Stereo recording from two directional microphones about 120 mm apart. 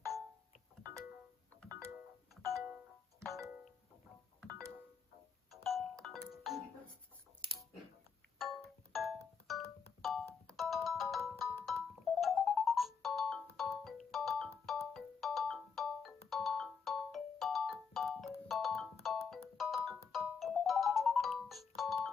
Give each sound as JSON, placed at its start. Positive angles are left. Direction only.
{"t": 3.2, "sound": "music", "side_deg": -25}
{"t": 4.4, "sound": "music", "side_deg": 5}
{"t": 7.4, "sound": "music", "side_deg": -45}
{"t": 8.4, "sound": "music", "side_deg": 0}